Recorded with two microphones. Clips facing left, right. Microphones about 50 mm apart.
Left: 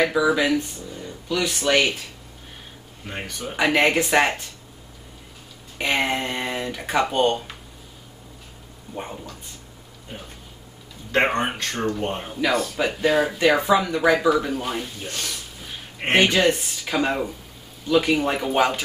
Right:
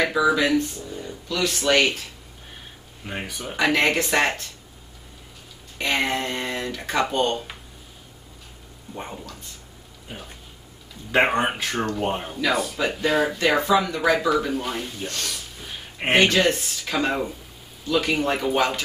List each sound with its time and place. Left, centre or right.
0.0 s speech: centre
3.1 s speech: centre
3.5 s speech: centre
5.8 s speech: centre
8.9 s speech: centre
10.1 s speech: centre
15.6 s a sound: centre
16.3 s speech: centre